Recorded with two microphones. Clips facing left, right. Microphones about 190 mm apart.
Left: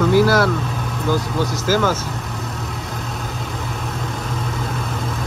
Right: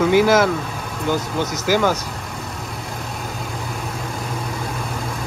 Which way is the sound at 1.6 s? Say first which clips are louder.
Right 1 dB; 15° right (ahead or behind).